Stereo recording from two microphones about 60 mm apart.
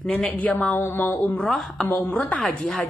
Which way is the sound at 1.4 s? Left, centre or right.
Centre.